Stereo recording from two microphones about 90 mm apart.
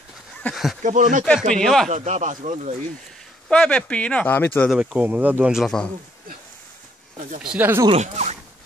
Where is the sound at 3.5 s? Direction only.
10° left (ahead or behind).